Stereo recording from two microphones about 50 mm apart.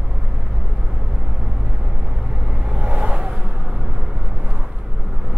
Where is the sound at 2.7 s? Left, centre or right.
Centre.